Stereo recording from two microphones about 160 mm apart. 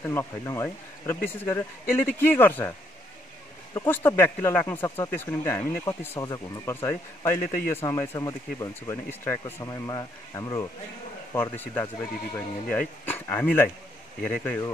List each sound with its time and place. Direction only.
0.0 s speech: 15° left (ahead or behind)
3.7 s speech: 15° left (ahead or behind)
11.5 s speech: 10° left (ahead or behind)